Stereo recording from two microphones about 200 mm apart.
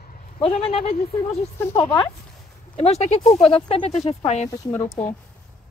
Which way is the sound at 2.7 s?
30° left (ahead or behind).